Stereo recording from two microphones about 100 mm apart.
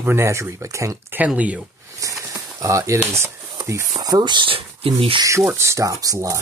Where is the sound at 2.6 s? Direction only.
35° right (ahead or behind); by 5.2 s 65° right (ahead or behind).